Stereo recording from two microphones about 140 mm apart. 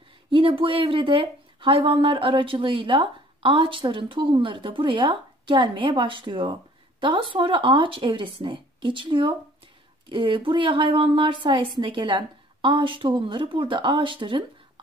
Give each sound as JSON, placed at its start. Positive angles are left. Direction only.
{"t": 0.3, "sound": "speech", "side_deg": -40}